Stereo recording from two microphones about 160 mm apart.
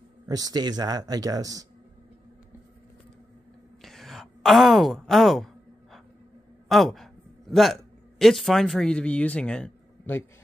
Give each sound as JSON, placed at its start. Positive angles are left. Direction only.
{"t": 0.3, "sound": "speech", "side_deg": -25}
{"t": 3.8, "sound": "a sound", "side_deg": 0}
{"t": 6.7, "sound": "speech", "side_deg": 0}